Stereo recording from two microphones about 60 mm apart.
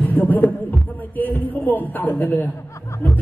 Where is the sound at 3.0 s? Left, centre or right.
Left.